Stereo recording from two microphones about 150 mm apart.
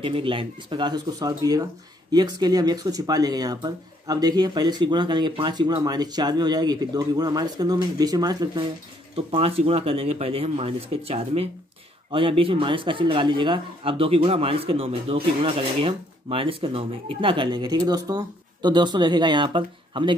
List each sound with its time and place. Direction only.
0.0 s speech: 35° right (ahead or behind)
9.1 s speech: 40° right (ahead or behind)